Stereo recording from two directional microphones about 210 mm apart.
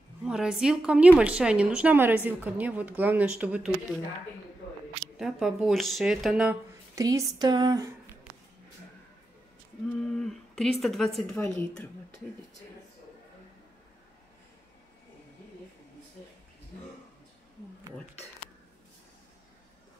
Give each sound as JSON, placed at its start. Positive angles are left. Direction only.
{"t": 0.2, "sound": "a woman's voice", "side_deg": -5}
{"t": 5.2, "sound": "a woman's voice", "side_deg": 0}
{"t": 7.0, "sound": "speech", "side_deg": -15}
{"t": 10.0, "sound": "a woman's voice", "side_deg": 0}